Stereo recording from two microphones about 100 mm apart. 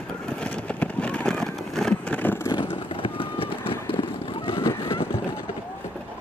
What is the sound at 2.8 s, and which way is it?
Vehicle, 65° left (ahead or behind).